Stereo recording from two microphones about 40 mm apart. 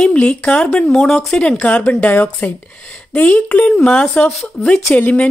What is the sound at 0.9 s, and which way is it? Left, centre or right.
Speech, centre.